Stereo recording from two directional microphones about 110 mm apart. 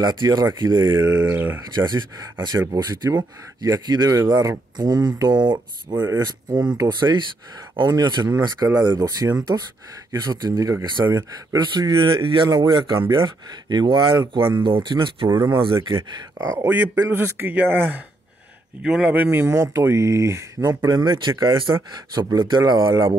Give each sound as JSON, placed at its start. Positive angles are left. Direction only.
{"t": 0.0, "sound": "speech", "side_deg": -40}
{"t": 0.9, "sound": "speech", "side_deg": -15}
{"t": 1.7, "sound": "speech", "side_deg": -40}
{"t": 15.2, "sound": "speech", "side_deg": -30}
{"t": 15.5, "sound": "speech", "side_deg": -50}
{"t": 16.3, "sound": "speech", "side_deg": -25}
{"t": 19.4, "sound": "speech", "side_deg": -25}